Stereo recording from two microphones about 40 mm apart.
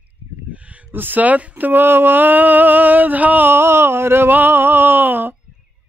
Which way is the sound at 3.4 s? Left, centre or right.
Right.